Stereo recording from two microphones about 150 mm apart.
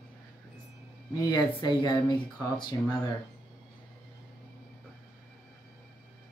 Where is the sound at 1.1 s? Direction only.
25° left (ahead or behind).